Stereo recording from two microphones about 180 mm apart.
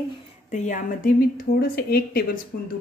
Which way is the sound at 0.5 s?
45° left (ahead or behind).